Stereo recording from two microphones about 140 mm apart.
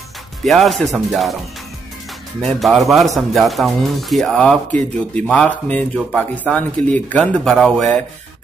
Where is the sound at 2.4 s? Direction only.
Centre (ahead or behind).